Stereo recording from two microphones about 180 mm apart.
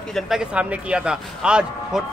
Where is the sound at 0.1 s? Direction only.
5° right (ahead or behind).